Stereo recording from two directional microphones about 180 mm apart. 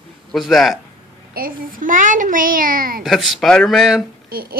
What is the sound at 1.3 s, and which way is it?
A child's voice, 50° right (ahead or behind).